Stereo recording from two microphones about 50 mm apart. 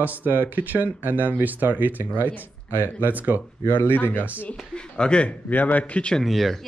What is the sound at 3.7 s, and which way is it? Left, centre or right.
Speech, left.